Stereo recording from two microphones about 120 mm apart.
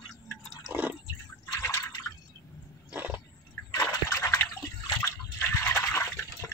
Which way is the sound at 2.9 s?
15° right (ahead or behind).